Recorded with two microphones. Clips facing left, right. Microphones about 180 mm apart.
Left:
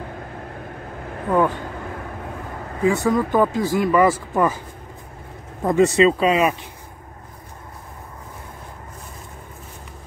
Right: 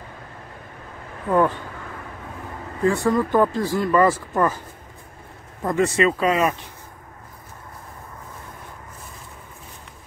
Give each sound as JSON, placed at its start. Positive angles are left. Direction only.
{"t": 2.8, "sound": "speech", "side_deg": 5}
{"t": 5.6, "sound": "speech", "side_deg": 20}